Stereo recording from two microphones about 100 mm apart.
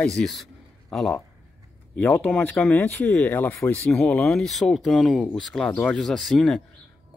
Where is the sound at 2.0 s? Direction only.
15° left (ahead or behind).